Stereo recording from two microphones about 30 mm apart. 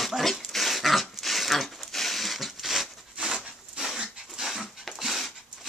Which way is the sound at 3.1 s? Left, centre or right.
Centre.